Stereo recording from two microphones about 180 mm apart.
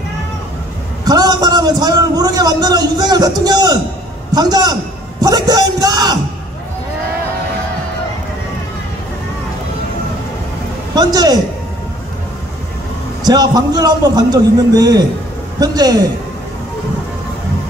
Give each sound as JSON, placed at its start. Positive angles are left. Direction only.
{"t": 1.0, "sound": "a man's voice", "side_deg": -20}
{"t": 11.0, "sound": "a man's voice", "side_deg": -20}
{"t": 13.2, "sound": "a man's voice", "side_deg": -20}